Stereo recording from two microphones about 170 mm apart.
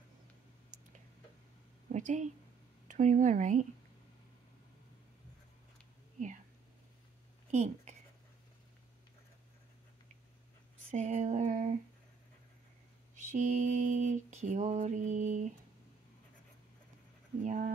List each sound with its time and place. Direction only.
1.9 s a sound: 45° right (ahead or behind)
2.9 s mantra: 45° right (ahead or behind)
6.1 s a sound: 45° right (ahead or behind)
7.5 s a woman's voice: 45° right (ahead or behind)
10.9 s mantra: 45° right (ahead or behind)
13.2 s mantra: 45° right (ahead or behind)
17.4 s mantra: 45° right (ahead or behind)